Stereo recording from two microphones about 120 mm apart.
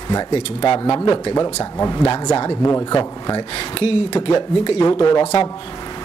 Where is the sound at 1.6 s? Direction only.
25° left (ahead or behind).